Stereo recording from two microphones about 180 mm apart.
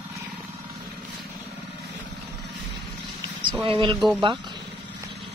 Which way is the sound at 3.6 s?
30° right (ahead or behind).